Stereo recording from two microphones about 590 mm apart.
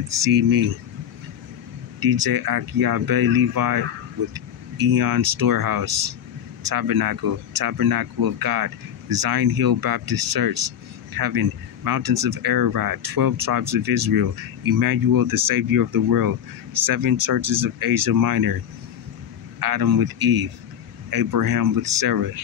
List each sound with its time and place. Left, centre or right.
0.2 s speech: right
2.0 s speech: right
4.3 s vehicle: right
5.4 s speech: right
19.6 s speech: right